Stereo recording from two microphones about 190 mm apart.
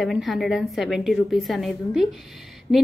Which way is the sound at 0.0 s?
Centre (ahead or behind).